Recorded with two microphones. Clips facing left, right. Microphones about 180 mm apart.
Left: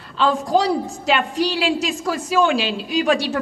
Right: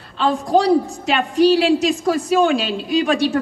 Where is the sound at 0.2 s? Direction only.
35° right (ahead or behind).